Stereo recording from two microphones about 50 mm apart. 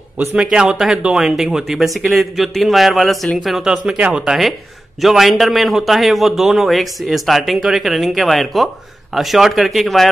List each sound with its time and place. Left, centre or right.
0.4 s a man's voice: centre
1.2 s a man's voice: centre
3.9 s speech: right
4.2 s a man's voice: centre